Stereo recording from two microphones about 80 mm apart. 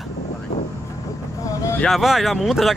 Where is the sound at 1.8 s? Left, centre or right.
Centre.